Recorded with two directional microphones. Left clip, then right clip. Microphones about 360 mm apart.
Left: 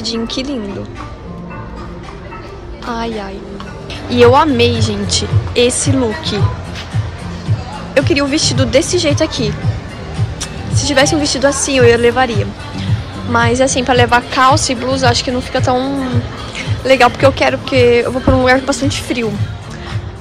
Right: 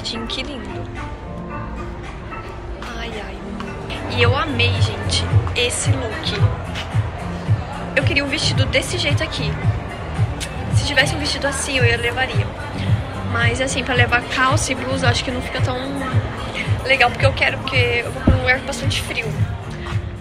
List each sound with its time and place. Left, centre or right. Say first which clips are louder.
0.0 s speech: left 6 dB; centre
4.1 s speech: left 11 dB; centre
7.9 s a woman's voice: left 6 dB; centre